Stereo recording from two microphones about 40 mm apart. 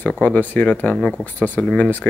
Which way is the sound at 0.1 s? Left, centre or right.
Left.